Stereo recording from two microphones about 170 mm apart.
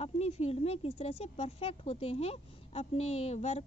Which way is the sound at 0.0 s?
35° left (ahead or behind).